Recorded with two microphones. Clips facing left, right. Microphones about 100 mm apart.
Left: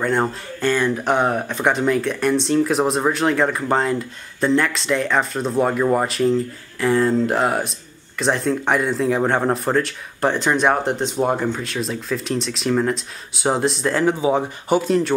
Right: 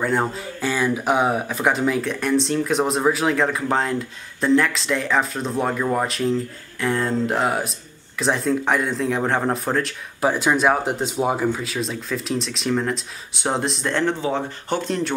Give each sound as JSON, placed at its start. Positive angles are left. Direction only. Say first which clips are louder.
{"t": 0.0, "sound": "speech", "louder": "left 1 dB", "side_deg": 0}